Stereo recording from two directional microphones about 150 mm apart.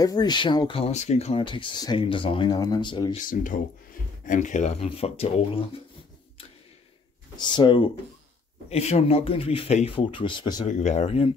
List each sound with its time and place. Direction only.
0.0 s speech: 25° left (ahead or behind)
3.2 s speech: 65° left (ahead or behind)
4.8 s speech: 40° left (ahead or behind)
7.3 s speech: 30° left (ahead or behind)
8.6 s speech: 45° left (ahead or behind)
10.7 s speech: 55° left (ahead or behind)